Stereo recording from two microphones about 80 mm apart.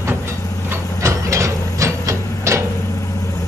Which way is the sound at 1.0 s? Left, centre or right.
Right.